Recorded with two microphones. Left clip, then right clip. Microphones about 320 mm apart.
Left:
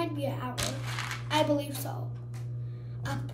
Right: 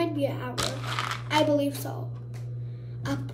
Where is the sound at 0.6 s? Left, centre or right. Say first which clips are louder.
Right 5 dB; right.